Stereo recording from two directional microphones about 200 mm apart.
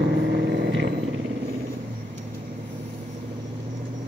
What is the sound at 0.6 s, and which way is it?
Vehicle, 60° right (ahead or behind).